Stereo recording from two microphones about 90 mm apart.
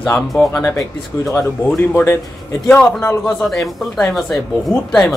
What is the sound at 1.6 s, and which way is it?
Speech, 15° left (ahead or behind).